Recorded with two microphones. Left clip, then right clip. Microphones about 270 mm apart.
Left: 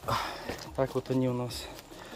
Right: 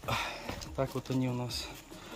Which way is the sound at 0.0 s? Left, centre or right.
Centre.